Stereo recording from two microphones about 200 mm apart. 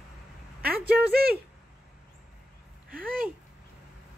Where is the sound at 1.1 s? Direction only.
50° right (ahead or behind).